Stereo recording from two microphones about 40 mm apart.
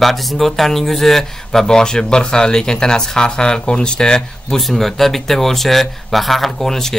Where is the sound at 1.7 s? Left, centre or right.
Centre.